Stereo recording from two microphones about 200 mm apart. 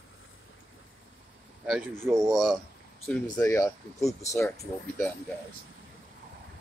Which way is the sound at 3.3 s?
15° left (ahead or behind).